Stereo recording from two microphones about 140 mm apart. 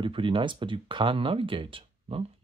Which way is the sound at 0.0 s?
40° right (ahead or behind).